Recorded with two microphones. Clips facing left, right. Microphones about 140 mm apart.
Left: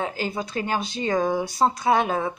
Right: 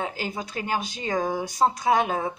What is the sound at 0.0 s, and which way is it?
Speech, 15° right (ahead or behind).